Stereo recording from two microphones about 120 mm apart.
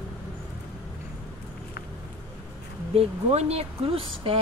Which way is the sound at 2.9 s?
60° right (ahead or behind).